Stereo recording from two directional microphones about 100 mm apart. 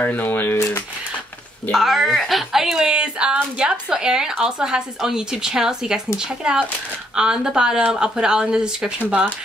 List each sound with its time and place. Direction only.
0.0 s speech: 15° left (ahead or behind)
1.7 s a woman's voice: 5° right (ahead or behind)